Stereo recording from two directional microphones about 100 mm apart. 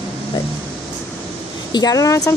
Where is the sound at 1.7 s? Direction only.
40° left (ahead or behind).